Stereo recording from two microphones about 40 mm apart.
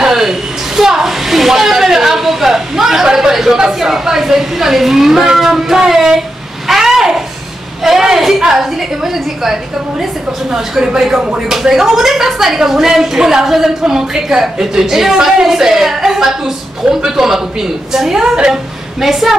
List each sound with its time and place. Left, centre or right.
0.0 s a woman's voice: centre
6.7 s a sound: centre
7.8 s a woman's voice: centre
11.1 s speech: right
11.4 s a woman's voice: centre